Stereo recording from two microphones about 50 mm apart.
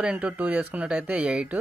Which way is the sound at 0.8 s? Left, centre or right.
Right.